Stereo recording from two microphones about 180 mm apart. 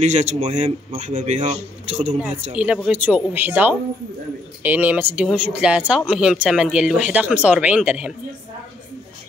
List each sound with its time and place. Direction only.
0.0 s a man's voice: 40° right (ahead or behind)
2.5 s speech: 5° right (ahead or behind)